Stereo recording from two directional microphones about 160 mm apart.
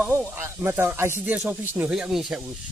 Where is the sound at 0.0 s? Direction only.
10° right (ahead or behind).